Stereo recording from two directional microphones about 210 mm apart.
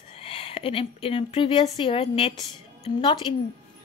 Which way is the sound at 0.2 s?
25° left (ahead or behind).